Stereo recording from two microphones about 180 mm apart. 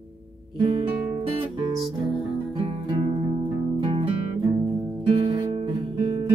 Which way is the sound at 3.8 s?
30° right (ahead or behind).